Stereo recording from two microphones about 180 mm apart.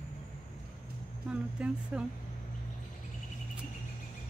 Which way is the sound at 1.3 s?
5° right (ahead or behind).